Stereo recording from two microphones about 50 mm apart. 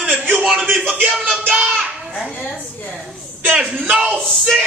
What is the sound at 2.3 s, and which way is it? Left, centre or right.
Speech, left.